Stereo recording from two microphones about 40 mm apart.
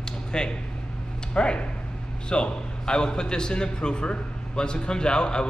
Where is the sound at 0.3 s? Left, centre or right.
Left.